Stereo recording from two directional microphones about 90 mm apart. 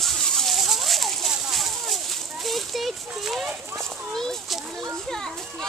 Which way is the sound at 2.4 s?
Centre (ahead or behind).